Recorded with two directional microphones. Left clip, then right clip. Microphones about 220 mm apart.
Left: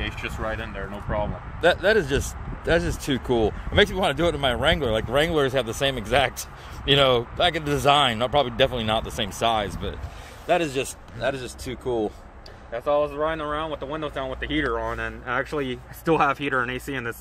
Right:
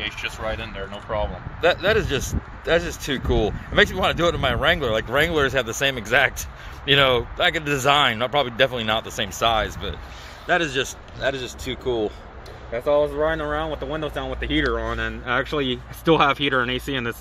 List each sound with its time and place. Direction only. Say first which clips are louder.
0.0 s speech: right 2 dB; 10° right (ahead or behind)
1.6 s speech: even; 5° left (ahead or behind)
12.7 s speech: right 3 dB; 40° right (ahead or behind)